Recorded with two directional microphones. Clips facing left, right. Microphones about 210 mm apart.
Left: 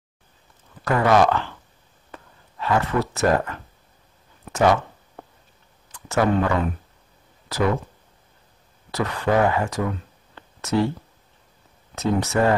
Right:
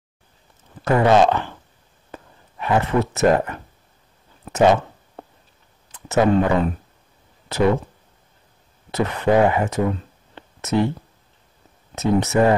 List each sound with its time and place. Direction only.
0.8 s speech: 25° right (ahead or behind)
2.0 s a sound: 25° right (ahead or behind)
5.9 s speech: 20° right (ahead or behind)
8.9 s speech: 20° right (ahead or behind)
11.9 s speech: 20° right (ahead or behind)